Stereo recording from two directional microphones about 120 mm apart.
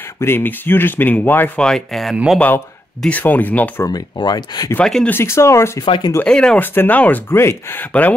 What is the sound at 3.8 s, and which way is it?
Speech, 35° left (ahead or behind).